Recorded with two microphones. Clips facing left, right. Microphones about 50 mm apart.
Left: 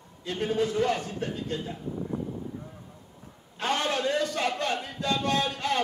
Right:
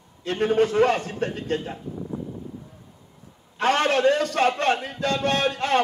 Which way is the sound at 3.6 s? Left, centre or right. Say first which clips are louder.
Right 8 dB; right.